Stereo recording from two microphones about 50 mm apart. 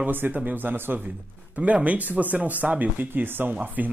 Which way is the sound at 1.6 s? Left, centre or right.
Right.